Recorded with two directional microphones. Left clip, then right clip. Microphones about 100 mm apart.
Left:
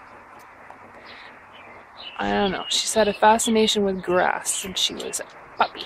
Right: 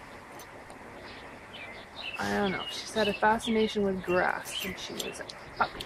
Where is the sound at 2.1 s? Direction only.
20° left (ahead or behind).